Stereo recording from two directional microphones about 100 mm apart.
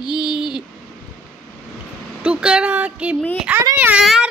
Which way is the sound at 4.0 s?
5° right (ahead or behind).